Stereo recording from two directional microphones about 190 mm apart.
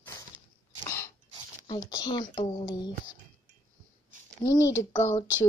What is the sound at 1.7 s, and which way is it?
Speech, 20° left (ahead or behind).